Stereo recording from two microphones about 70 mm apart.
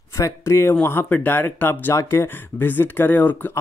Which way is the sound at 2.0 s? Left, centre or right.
Left.